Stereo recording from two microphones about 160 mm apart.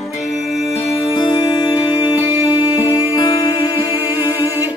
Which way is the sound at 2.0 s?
10° right (ahead or behind).